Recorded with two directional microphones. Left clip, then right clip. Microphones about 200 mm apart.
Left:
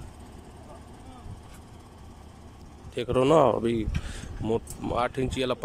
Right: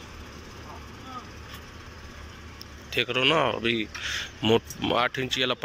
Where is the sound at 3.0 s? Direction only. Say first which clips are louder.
Left 2 dB; 20° left (ahead or behind).